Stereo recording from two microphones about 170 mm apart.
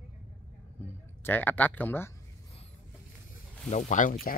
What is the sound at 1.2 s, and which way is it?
Speech, 10° left (ahead or behind).